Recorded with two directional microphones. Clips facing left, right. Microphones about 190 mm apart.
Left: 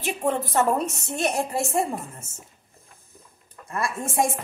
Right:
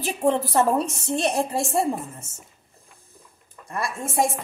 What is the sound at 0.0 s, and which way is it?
A woman's voice, 35° right (ahead or behind).